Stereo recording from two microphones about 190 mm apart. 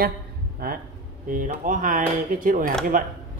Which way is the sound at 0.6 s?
55° right (ahead or behind).